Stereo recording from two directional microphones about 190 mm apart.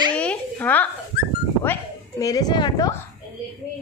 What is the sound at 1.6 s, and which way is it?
A woman's voice, 15° left (ahead or behind).